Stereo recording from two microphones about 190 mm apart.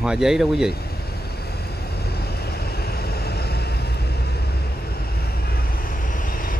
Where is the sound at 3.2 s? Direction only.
55° left (ahead or behind).